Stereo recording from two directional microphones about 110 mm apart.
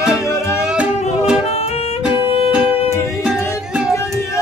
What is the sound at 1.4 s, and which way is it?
Music, 65° left (ahead or behind).